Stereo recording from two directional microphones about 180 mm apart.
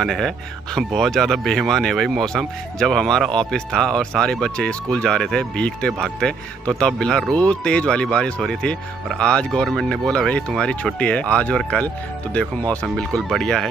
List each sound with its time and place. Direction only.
0.0 s speech: centre (ahead or behind)